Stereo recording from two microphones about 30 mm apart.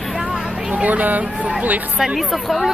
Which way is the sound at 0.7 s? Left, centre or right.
Right.